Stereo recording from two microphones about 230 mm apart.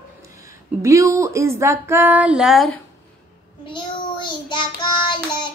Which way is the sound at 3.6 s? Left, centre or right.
Left.